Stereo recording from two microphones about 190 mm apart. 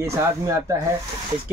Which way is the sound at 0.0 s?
15° right (ahead or behind).